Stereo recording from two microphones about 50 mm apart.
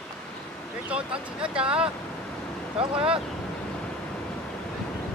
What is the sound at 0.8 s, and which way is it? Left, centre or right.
Speech, right.